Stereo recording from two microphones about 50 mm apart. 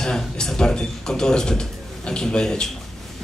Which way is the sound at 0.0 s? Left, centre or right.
Centre.